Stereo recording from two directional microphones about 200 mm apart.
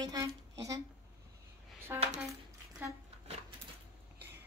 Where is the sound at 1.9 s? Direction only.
15° right (ahead or behind).